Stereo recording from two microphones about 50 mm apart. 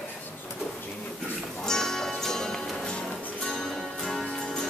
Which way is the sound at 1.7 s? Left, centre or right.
Centre.